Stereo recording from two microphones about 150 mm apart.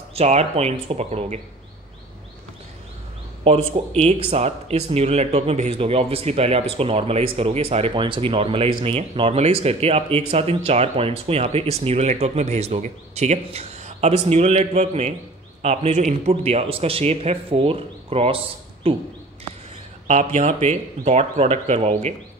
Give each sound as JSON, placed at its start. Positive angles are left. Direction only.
{"t": 0.1, "sound": "speech", "side_deg": -45}
{"t": 4.0, "sound": "speech", "side_deg": -45}
{"t": 20.3, "sound": "speech", "side_deg": -45}